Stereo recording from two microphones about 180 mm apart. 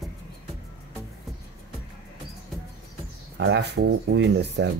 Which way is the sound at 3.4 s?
70° right (ahead or behind).